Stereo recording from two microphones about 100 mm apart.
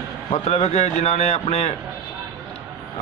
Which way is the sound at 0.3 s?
90° left.